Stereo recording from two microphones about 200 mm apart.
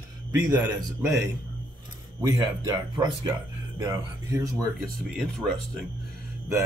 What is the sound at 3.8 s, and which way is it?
Speech, 15° right (ahead or behind).